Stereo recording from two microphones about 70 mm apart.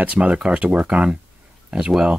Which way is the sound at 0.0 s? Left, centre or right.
Centre.